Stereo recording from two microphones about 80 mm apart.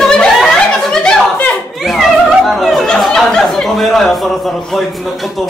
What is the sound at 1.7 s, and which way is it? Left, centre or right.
Speech, centre.